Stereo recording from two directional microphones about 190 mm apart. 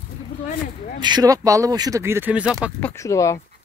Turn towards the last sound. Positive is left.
turn(degrees=15)  # may be behind; listen again after turning